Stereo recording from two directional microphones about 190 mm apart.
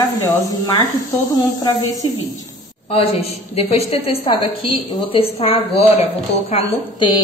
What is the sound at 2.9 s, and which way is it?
A woman's voice, 30° left (ahead or behind).